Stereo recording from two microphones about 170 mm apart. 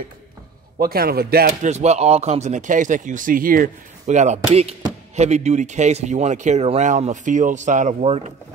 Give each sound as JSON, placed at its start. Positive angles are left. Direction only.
{"t": 0.7, "sound": "speech", "side_deg": -60}
{"t": 1.7, "sound": "speech", "side_deg": -40}